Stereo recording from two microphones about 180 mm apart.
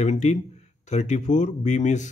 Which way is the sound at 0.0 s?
40° left (ahead or behind).